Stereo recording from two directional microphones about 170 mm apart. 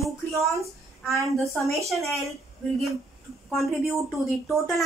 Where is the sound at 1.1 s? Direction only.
20° right (ahead or behind).